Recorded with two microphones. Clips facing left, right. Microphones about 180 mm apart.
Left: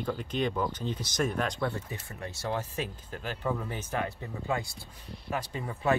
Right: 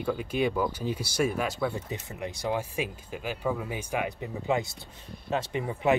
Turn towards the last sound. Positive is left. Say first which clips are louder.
# right 3 dB
turn(degrees=-15)  # may be behind; listen again after turning